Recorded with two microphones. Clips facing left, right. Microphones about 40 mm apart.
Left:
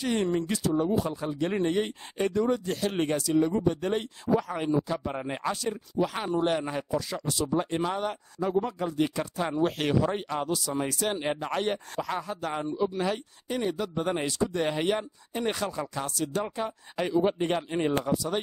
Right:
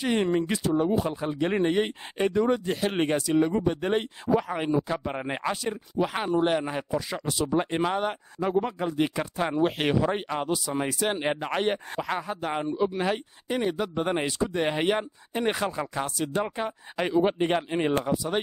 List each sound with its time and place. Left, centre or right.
0.0 s speech: right
17.4 s speech: right